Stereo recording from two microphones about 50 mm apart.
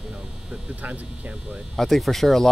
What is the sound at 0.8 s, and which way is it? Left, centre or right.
Speech, right.